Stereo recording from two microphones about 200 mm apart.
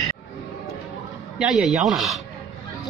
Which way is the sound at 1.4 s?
Centre (ahead or behind).